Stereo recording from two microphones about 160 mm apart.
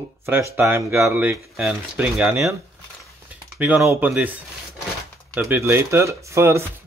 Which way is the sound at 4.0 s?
10° right (ahead or behind).